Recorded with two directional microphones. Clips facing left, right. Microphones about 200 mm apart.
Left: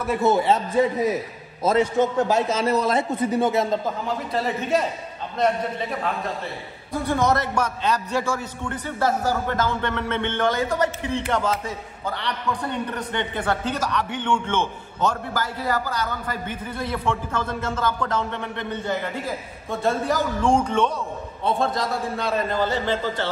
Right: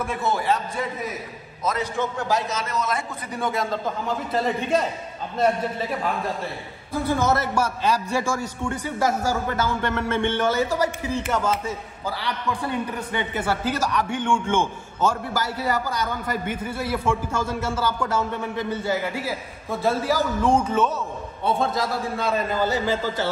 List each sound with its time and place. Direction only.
0.1 s a man's voice: 20° left (ahead or behind)
4.3 s a man's voice: centre (ahead or behind)
6.9 s a man's voice: 5° right (ahead or behind)